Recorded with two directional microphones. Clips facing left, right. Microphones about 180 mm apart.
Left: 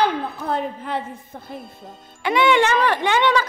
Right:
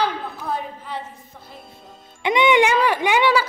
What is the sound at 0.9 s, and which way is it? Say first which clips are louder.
Speech: left 4 dB; 55° left (ahead or behind).